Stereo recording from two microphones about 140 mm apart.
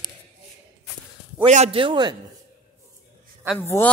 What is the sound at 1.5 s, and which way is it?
Speech, 50° right (ahead or behind).